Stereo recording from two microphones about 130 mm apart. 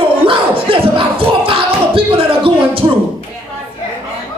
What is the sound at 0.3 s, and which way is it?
Crowd, 40° right (ahead or behind).